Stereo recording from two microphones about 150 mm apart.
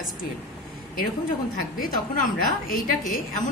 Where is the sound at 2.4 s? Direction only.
70° left (ahead or behind).